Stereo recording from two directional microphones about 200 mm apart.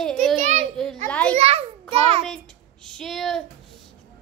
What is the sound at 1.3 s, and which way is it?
Speech, 30° right (ahead or behind).